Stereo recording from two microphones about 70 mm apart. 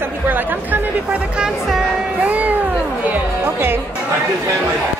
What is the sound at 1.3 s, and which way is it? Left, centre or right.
Music, centre.